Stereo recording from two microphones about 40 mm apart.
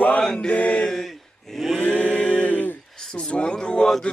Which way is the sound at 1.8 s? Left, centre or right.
Left.